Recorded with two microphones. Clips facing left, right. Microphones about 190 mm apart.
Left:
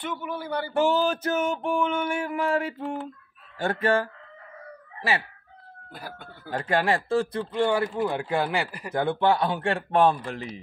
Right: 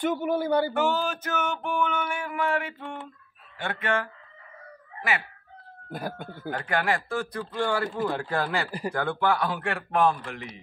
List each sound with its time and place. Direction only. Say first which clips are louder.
0.0 s a man's voice: right 7 dB; 45° right (ahead or behind)
0.7 s a sound: left 4 dB; 30° left (ahead or behind)
5.9 s a man's voice: right 7 dB; 45° right (ahead or behind)
6.5 s speech: left 3 dB; 30° left (ahead or behind)